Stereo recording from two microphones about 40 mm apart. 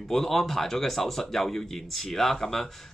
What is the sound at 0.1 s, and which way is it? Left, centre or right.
Speech, centre.